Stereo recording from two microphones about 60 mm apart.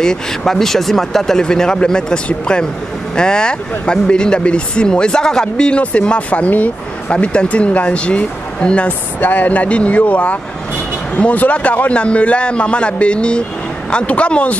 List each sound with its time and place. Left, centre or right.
0.0 s speech: centre
9.2 s speech: left